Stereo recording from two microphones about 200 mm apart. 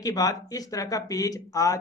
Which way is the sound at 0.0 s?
15° left (ahead or behind).